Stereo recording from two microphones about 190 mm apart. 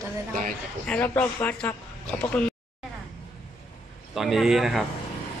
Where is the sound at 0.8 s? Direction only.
5° left (ahead or behind).